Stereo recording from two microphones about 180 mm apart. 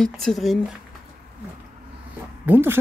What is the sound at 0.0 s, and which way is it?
Speech, centre (ahead or behind).